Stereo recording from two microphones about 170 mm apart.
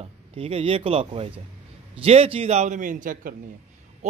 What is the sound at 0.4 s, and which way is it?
A man's voice, 35° right (ahead or behind).